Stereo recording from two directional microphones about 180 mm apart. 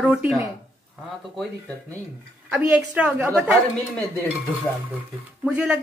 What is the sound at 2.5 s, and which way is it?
Speech, 5° right (ahead or behind).